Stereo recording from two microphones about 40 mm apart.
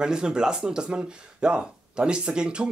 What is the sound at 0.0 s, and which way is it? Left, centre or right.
Speech, centre.